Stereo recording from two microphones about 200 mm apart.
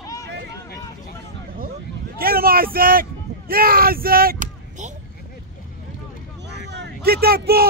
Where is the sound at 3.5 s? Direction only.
50° right (ahead or behind).